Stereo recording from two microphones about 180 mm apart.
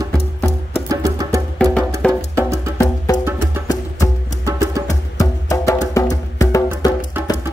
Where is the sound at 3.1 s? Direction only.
20° left (ahead or behind).